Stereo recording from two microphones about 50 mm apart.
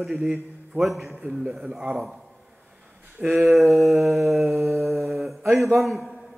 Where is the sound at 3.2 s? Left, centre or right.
Right.